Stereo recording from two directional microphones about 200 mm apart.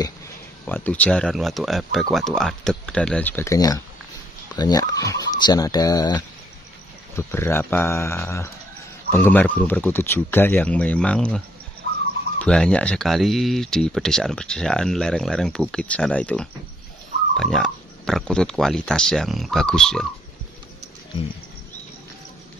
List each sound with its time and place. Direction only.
0.7 s speech: 10° left (ahead or behind)